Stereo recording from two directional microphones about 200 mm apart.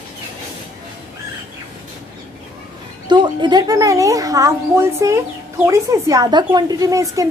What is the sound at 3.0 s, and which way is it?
A woman's voice, 20° right (ahead or behind).